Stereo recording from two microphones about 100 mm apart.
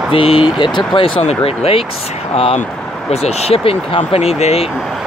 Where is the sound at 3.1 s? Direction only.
90° left.